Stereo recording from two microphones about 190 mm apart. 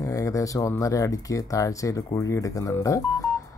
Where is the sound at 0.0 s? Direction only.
15° left (ahead or behind).